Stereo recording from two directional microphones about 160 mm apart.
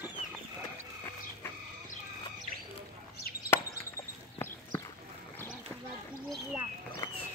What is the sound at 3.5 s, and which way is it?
Chop, 15° left (ahead or behind).